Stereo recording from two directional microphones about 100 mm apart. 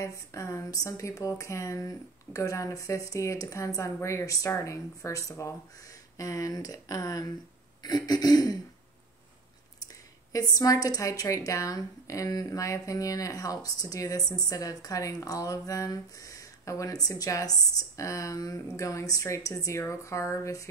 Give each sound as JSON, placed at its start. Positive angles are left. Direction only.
{"t": 0.0, "sound": "speech", "side_deg": 30}
{"t": 10.5, "sound": "speech", "side_deg": 35}